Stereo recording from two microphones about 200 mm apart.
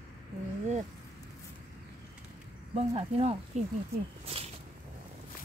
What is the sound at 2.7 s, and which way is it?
Speech, 30° right (ahead or behind).